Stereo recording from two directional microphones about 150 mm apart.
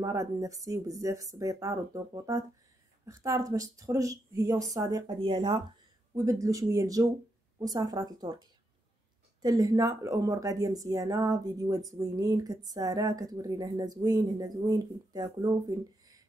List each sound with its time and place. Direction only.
0.0 s speech: 20° right (ahead or behind)
5.2 s speech: 35° right (ahead or behind)
6.1 s speech: 20° right (ahead or behind)